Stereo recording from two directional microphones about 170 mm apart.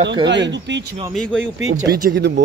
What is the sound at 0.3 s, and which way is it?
Speech, 90° right.